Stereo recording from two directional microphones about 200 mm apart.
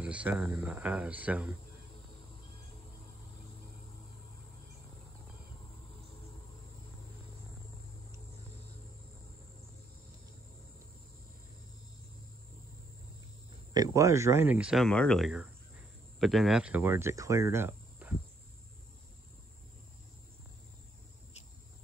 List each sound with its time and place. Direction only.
0.0 s speech: 5° right (ahead or behind)
13.7 s speech: 15° right (ahead or behind)